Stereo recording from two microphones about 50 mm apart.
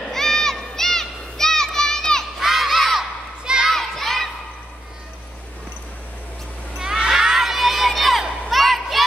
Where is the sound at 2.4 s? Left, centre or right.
Centre.